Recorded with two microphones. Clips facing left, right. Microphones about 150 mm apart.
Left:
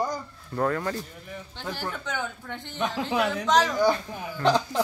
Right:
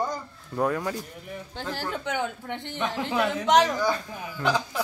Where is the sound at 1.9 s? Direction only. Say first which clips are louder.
Right 4 dB; 25° right (ahead or behind).